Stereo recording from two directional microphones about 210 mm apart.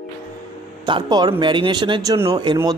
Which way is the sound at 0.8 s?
20° right (ahead or behind).